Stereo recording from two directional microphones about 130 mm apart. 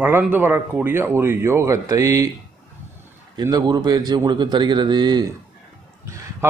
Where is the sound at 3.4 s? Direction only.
30° right (ahead or behind).